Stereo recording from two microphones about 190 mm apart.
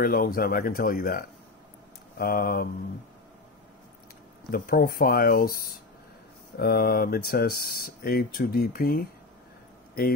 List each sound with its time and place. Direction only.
0.0 s speech: 50° left (ahead or behind)
4.5 s speech: 50° left (ahead or behind)